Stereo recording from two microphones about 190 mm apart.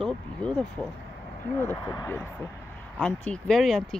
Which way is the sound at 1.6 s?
15° left (ahead or behind).